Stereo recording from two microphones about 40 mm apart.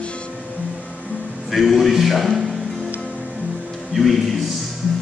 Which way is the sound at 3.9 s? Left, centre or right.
Centre.